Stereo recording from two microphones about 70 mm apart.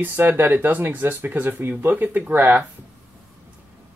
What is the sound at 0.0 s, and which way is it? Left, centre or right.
Speech, right.